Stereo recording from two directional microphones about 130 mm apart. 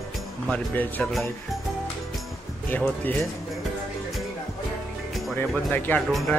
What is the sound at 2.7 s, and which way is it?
Speech, 15° left (ahead or behind).